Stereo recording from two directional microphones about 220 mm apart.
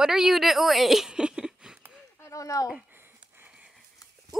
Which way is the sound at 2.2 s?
15° left (ahead or behind).